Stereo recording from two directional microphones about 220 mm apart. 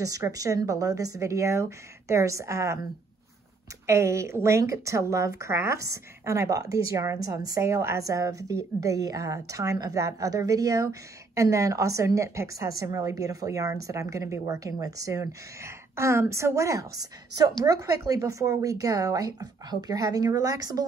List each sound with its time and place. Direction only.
0.0 s a woman's voice: 15° right (ahead or behind)
3.8 s a woman's voice: 15° right (ahead or behind)